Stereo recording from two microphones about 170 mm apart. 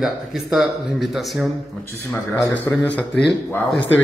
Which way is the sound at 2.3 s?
20° left (ahead or behind).